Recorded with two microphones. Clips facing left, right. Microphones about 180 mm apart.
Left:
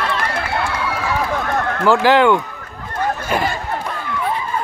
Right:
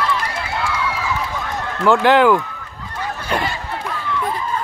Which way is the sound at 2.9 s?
50° left (ahead or behind).